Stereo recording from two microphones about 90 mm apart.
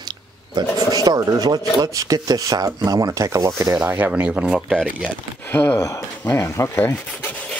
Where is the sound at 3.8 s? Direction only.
20° right (ahead or behind).